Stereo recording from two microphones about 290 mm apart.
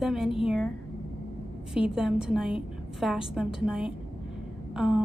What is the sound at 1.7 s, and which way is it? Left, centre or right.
A woman's voice, centre.